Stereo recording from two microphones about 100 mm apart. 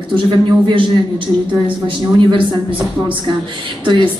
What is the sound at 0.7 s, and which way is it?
A woman's voice, 60° right (ahead or behind).